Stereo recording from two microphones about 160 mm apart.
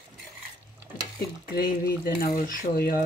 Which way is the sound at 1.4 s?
70° left (ahead or behind).